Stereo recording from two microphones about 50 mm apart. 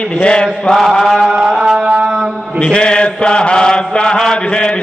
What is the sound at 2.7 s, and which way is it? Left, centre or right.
Mantra, left.